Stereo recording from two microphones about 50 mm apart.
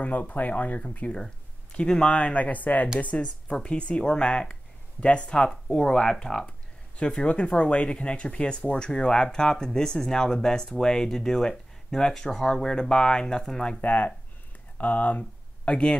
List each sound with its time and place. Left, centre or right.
0.0 s speech: left; by 13.7 s centre
13.7 s speech: left